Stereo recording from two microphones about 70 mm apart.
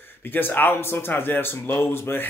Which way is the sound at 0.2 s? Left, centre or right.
Left.